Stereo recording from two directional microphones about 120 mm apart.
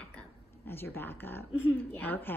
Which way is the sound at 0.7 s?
20° left (ahead or behind).